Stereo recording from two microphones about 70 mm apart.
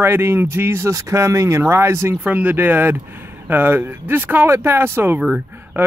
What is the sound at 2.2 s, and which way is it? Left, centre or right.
Speech, right.